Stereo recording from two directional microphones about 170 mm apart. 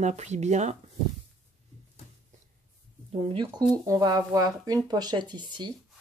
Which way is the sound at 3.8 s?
20° right (ahead or behind).